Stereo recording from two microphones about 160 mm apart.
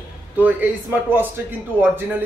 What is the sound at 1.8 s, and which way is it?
Speech, 15° right (ahead or behind).